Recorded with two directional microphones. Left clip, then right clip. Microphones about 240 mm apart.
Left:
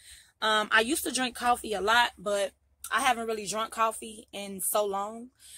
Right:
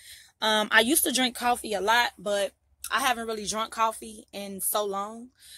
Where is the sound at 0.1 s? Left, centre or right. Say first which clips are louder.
Right 1 dB; right.